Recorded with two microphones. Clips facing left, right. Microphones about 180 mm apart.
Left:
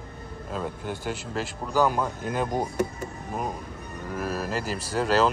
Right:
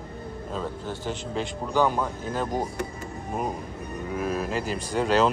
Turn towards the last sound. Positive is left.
turn(degrees=0)  # may be behind; listen again after turning